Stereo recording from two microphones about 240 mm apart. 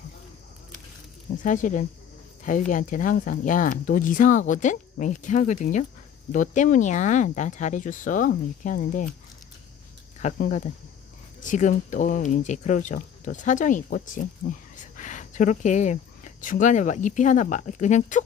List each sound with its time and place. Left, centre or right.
1.3 s speech: left
10.2 s speech: left